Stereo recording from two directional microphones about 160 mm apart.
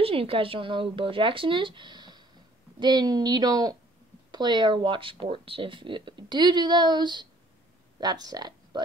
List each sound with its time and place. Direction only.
0.0 s speech: 35° right (ahead or behind)